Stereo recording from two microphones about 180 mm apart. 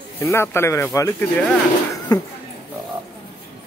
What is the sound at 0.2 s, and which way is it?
A man's voice, 15° left (ahead or behind).